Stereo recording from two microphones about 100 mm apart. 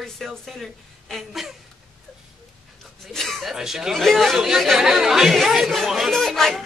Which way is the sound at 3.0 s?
Centre (ahead or behind).